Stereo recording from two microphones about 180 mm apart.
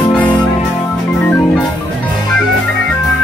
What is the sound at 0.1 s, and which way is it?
Music, 10° left (ahead or behind).